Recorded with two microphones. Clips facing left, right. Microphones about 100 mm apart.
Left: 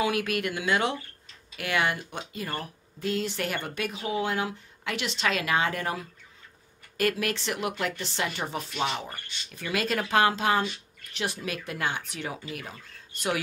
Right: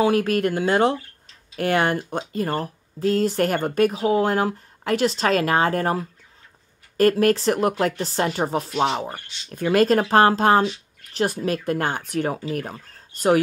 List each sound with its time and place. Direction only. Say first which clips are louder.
0.0 s speech: right 8 dB; 35° right (ahead or behind)